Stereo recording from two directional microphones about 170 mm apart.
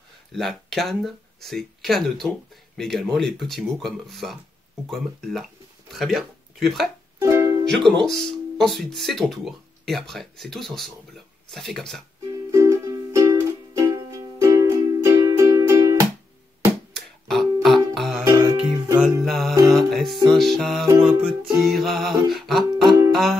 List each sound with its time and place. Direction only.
0.3 s speech: centre (ahead or behind)
7.2 s music: 15° right (ahead or behind)
7.7 s speech: centre (ahead or behind)
12.4 s music: 20° right (ahead or behind)
16.9 s music: centre (ahead or behind)
18.2 s music: 20° right (ahead or behind)
19.2 s music: centre (ahead or behind)